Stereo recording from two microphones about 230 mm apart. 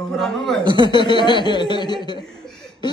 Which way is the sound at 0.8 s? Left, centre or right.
Centre.